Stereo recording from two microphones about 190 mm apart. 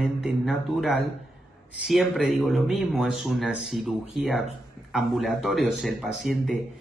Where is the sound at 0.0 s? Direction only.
Centre (ahead or behind).